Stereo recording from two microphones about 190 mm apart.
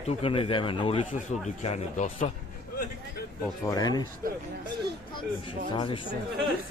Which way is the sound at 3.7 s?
20° left (ahead or behind).